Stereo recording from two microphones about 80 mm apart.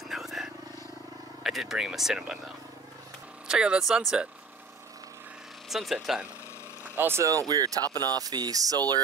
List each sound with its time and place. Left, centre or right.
0.1 s vehicle: centre
1.4 s speech: centre
5.7 s speech: centre
7.0 s speech: right
7.2 s speech: right